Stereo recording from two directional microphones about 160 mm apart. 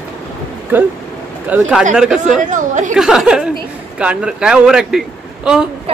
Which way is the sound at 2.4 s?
50° right (ahead or behind).